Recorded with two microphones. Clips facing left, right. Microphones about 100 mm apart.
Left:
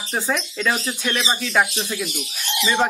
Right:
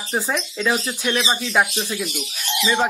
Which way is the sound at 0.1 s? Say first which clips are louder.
Even; 10° right (ahead or behind).